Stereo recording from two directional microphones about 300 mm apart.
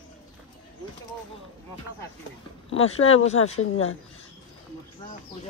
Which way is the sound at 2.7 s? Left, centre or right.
Left.